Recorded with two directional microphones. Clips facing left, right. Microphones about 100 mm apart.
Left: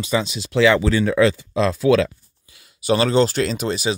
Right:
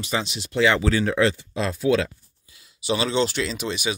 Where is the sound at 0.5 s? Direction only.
90° left.